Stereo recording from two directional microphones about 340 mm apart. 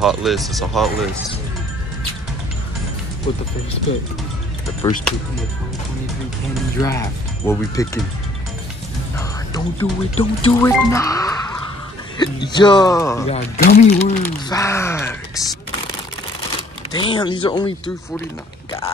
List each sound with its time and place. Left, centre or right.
0.0 s speech: centre
3.3 s speech: centre
4.8 s speech: centre
6.8 s speech: centre
9.5 s speech: centre
13.6 s speech: centre
14.6 s speech: centre
16.9 s speech: centre